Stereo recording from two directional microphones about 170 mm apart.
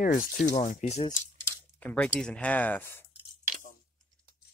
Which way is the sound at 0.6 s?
45° left (ahead or behind).